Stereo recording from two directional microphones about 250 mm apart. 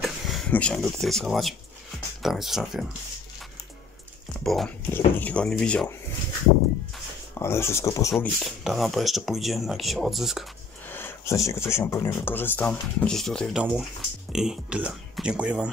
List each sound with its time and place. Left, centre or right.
0.0 s speech: centre
4.4 s speech: centre
7.3 s speech: centre
8.1 s speech: centre